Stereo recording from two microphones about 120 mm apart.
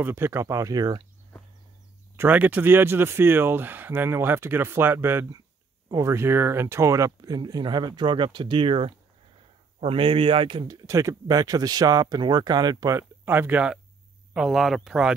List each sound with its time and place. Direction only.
0.0 s speech: 20° right (ahead or behind)
2.1 s speech: 15° right (ahead or behind); by 10.8 s 40° right (ahead or behind)
10.9 s speech: 25° right (ahead or behind)
12.9 s speech: 15° right (ahead or behind)